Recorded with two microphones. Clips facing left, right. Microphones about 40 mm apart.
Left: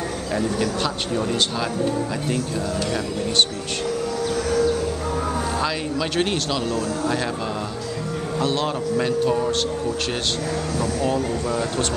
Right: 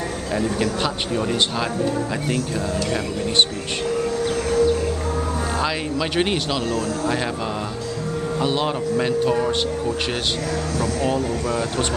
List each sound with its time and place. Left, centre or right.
0.8 s speech: centre
4.2 s civil defense siren: right
5.6 s speech: centre
8.4 s speech: centre